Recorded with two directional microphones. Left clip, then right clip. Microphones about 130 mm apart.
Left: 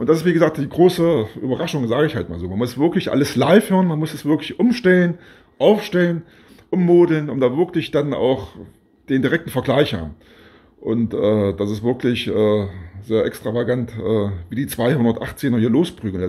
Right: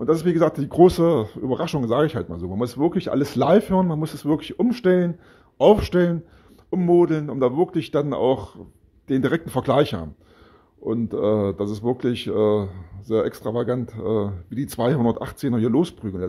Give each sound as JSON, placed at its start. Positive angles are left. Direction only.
{"t": 0.0, "sound": "speech", "side_deg": -35}
{"t": 0.7, "sound": "speech", "side_deg": -55}
{"t": 5.6, "sound": "speech", "side_deg": -60}
{"t": 6.7, "sound": "speech", "side_deg": -35}